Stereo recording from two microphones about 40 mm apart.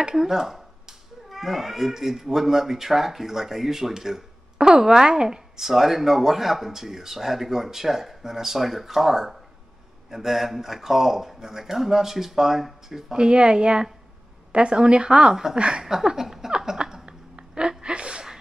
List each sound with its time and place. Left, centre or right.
0.1 s speech: centre
4.6 s speech: centre
13.2 s a woman's voice: right
15.8 s speech: centre
16.5 s a sound: centre